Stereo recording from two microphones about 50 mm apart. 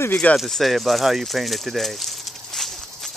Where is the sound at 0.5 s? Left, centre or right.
Centre.